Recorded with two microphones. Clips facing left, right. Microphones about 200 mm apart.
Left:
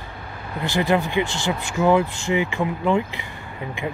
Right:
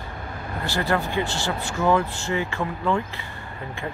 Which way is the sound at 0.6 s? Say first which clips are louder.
Left 4 dB; 15° left (ahead or behind).